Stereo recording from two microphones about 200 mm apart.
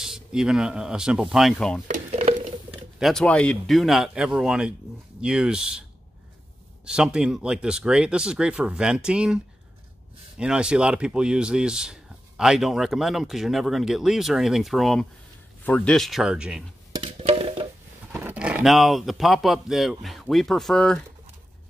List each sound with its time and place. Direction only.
0.0 s speech: 5° right (ahead or behind)
1.9 s stir: 35° right (ahead or behind)
3.0 s speech: centre (ahead or behind)
16.9 s music: 25° right (ahead or behind)
18.1 s speech: 5° right (ahead or behind)